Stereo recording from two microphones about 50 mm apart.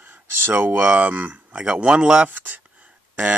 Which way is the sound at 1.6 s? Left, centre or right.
Centre.